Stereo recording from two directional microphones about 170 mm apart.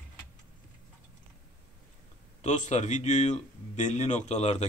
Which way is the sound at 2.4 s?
45° left (ahead or behind).